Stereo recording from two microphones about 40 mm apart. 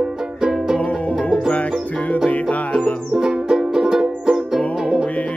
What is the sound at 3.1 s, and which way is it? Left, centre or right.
Music, centre.